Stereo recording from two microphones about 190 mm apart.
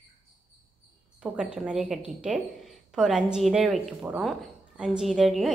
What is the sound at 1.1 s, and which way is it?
A woman's voice, 5° right (ahead or behind).